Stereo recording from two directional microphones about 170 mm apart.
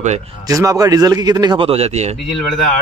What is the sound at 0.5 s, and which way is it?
Speech, 20° right (ahead or behind).